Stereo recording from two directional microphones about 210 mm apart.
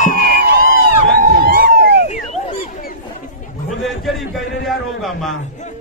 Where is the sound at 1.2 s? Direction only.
45° right (ahead or behind).